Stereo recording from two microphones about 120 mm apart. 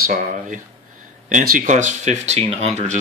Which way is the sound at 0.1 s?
90° right.